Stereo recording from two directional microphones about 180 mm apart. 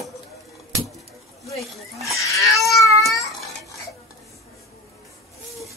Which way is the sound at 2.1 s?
15° left (ahead or behind).